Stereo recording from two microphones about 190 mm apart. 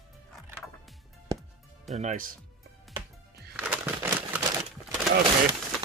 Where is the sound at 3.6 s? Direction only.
10° right (ahead or behind).